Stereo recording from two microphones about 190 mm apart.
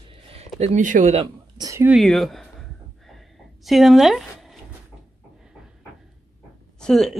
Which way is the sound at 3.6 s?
Centre (ahead or behind).